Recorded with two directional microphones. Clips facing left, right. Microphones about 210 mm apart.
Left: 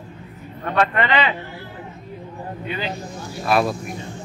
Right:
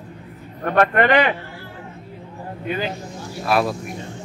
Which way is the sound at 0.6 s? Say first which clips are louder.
Right 4 dB; 50° right (ahead or behind).